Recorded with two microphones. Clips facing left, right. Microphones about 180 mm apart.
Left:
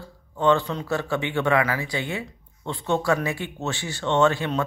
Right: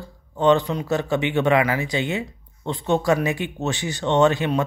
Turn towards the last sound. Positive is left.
turn(degrees=-20)  # may be behind; listen again after turning